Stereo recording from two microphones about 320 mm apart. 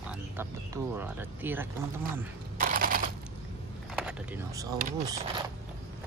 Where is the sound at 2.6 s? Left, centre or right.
Right.